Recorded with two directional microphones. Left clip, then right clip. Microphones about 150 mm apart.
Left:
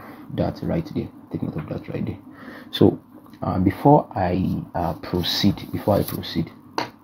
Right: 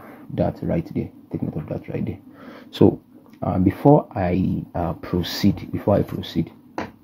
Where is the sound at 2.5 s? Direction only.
25° right (ahead or behind).